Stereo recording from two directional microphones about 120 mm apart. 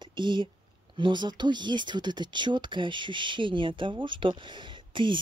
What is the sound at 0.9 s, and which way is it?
Speech, 40° right (ahead or behind).